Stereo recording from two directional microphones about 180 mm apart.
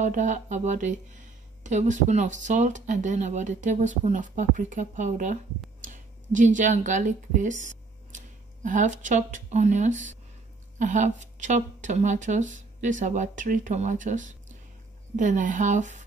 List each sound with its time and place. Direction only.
0.0 s speech: 45° right (ahead or behind)